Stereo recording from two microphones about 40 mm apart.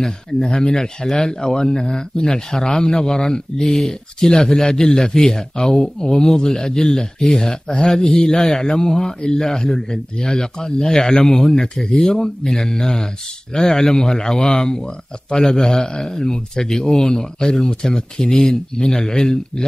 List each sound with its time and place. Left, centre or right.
0.0 s speech: centre